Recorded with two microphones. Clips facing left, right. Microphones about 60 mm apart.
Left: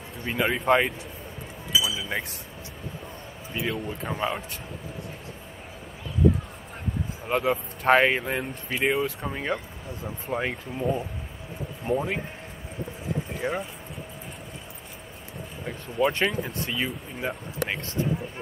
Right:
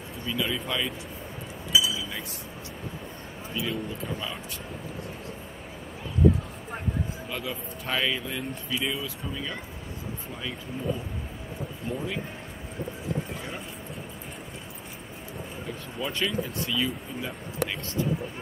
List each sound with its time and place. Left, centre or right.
0.2 s speech: left
1.7 s chink: centre
3.5 s speech: left
7.2 s speech: left
11.9 s speech: left
13.4 s speech: left
16.0 s speech: left